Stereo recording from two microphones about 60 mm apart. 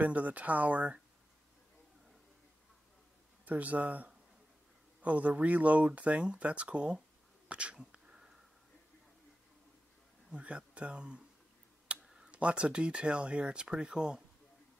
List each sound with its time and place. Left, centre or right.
0.0 s speech: right
3.4 s speech: right
7.4 s sneeze: centre
10.3 s speech: centre
12.0 s tick-tock: centre
12.3 s speech: centre